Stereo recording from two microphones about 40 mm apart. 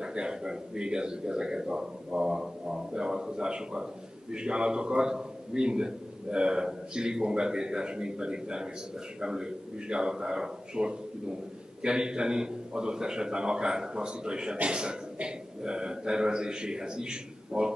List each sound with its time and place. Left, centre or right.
0.0 s a man's voice: right